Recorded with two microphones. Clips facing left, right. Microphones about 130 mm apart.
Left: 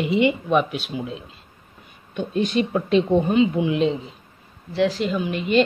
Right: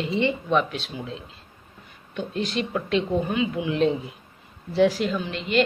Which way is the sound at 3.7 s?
Centre (ahead or behind).